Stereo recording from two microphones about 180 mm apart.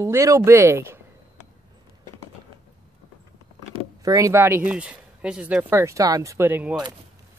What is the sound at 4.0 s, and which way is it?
Speech, 20° right (ahead or behind).